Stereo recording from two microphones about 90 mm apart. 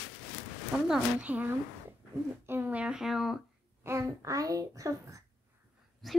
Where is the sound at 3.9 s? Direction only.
30° right (ahead or behind).